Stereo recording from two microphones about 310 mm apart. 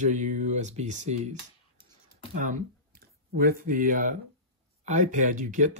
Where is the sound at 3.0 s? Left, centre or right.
Right.